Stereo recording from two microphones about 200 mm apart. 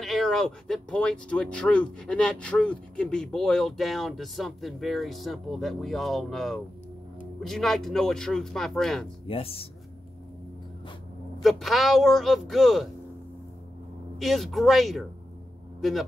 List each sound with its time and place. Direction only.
0.0 s speech: centre (ahead or behind)
9.3 s speech: 30° left (ahead or behind)
11.4 s speech: centre (ahead or behind)
14.1 s speech: centre (ahead or behind)